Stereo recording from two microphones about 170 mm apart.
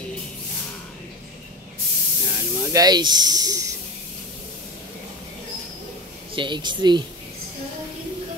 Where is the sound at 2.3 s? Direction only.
15° right (ahead or behind).